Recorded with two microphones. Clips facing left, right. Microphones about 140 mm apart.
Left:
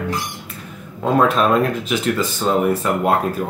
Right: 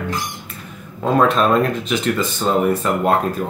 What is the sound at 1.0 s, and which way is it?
Speech, 5° left (ahead or behind).